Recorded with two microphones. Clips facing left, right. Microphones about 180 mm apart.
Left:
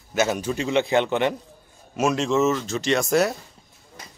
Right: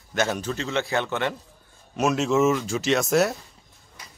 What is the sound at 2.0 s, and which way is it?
Speech, 5° right (ahead or behind).